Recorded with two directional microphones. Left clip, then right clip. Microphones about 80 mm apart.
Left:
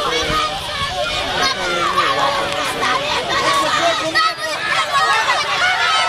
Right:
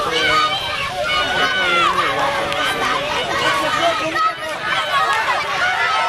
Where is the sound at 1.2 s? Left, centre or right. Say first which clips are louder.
Right 2 dB; centre.